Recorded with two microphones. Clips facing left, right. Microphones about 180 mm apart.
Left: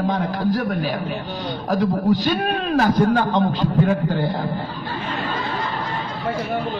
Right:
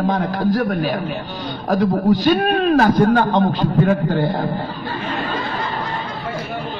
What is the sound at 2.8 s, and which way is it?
Speech, 55° right (ahead or behind).